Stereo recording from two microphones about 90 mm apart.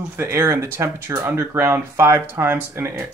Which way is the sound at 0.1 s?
30° right (ahead or behind).